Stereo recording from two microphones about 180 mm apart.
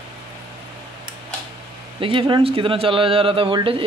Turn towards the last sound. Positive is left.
turn(degrees=-30)  # may be behind; listen again after turning